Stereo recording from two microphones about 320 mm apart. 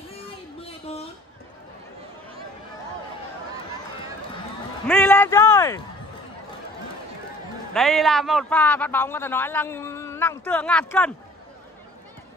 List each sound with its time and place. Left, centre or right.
0.6 s a sound: centre
4.8 s a man's voice: centre
7.7 s a man's voice: centre